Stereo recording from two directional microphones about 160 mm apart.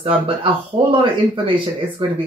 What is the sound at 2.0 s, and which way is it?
Speech, 35° right (ahead or behind).